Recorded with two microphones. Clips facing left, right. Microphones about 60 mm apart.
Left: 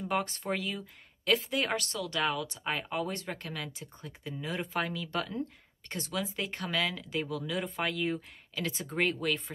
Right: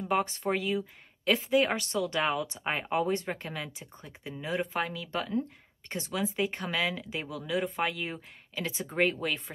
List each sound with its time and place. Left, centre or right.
0.0 s a woman's voice: centre